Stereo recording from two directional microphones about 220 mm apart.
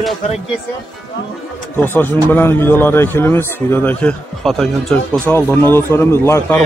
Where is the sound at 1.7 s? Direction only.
10° left (ahead or behind).